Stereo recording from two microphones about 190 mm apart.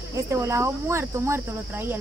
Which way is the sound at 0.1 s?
15° right (ahead or behind).